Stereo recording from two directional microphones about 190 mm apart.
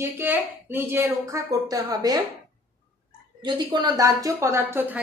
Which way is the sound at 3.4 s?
25° right (ahead or behind).